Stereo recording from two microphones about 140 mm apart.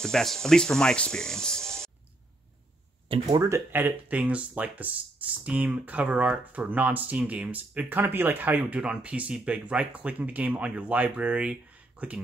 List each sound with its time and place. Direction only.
0.0 s speech: 5° left (ahead or behind)
3.1 s speech: 30° right (ahead or behind)
3.4 s speech: 15° right (ahead or behind)